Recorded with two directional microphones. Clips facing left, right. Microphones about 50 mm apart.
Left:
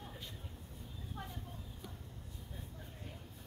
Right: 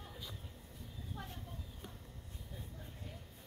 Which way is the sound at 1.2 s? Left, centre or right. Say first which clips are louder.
Left 2 dB; centre.